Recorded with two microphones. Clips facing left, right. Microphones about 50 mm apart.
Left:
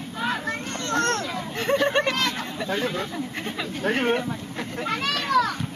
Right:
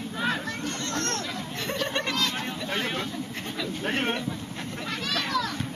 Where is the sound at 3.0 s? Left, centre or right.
Left.